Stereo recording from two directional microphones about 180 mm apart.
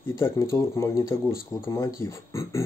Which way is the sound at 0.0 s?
15° left (ahead or behind).